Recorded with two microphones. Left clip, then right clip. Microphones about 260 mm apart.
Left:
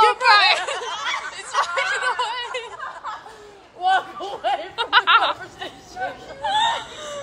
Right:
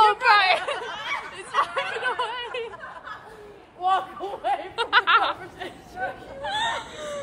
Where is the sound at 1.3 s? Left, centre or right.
Centre.